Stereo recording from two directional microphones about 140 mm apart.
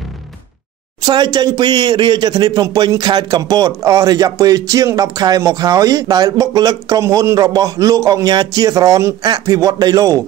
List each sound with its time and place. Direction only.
1.0 s a man's voice: 30° right (ahead or behind)